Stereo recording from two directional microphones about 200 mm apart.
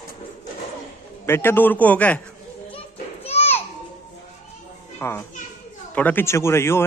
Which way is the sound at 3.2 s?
30° left (ahead or behind).